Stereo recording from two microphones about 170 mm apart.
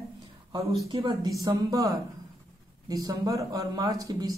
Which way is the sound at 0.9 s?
25° right (ahead or behind).